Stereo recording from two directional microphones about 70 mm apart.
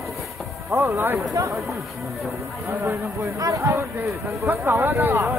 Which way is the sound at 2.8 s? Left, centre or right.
Right.